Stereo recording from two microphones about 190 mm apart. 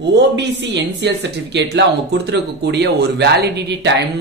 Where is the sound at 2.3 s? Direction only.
65° right (ahead or behind).